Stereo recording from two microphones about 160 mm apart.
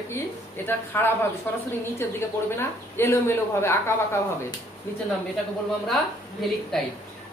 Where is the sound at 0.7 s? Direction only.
15° left (ahead or behind).